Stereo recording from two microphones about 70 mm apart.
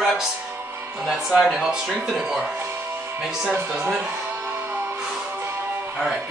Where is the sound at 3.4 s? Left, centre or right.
Centre.